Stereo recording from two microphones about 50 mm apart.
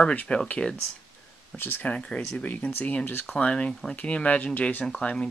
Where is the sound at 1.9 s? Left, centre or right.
Left.